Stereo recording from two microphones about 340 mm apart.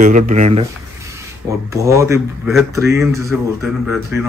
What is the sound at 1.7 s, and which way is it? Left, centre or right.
Speech, centre.